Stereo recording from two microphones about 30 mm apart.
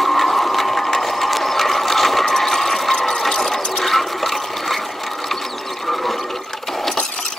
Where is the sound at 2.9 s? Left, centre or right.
Left.